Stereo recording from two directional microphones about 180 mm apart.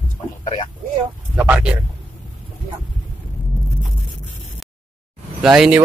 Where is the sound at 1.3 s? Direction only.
10° right (ahead or behind).